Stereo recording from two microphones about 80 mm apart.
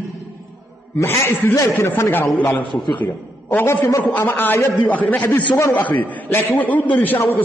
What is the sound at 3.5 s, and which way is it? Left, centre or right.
A man's voice, left.